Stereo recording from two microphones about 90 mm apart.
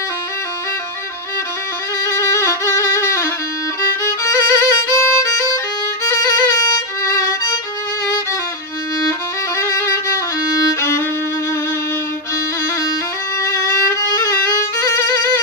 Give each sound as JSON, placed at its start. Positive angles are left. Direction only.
{"t": 2.0, "sound": "music", "side_deg": 35}
{"t": 4.0, "sound": "violin", "side_deg": 35}
{"t": 9.6, "sound": "music", "side_deg": 35}
{"t": 10.7, "sound": "violin", "side_deg": 30}
{"t": 13.4, "sound": "violin", "side_deg": 30}